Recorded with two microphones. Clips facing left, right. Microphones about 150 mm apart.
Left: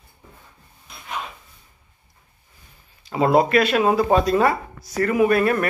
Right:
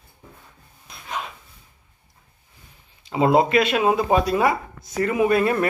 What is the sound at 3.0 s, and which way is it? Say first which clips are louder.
Speech: even; 20° right (ahead or behind).